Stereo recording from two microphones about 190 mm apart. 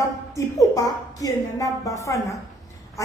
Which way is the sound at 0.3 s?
15° left (ahead or behind).